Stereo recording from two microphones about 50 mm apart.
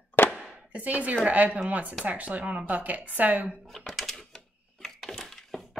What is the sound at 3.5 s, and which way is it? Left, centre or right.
Typewriter, centre.